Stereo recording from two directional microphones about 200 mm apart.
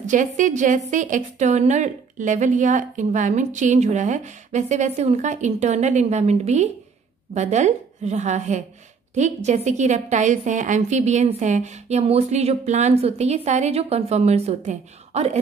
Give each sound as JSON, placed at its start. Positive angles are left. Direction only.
{"t": 0.0, "sound": "a woman's voice", "side_deg": -40}